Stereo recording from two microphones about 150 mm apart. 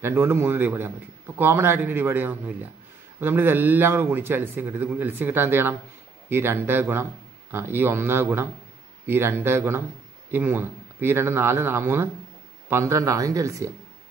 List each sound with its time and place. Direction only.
0.0 s a man's voice: 15° right (ahead or behind)